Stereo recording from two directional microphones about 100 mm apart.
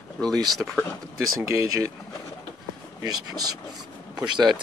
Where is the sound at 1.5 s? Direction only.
30° right (ahead or behind).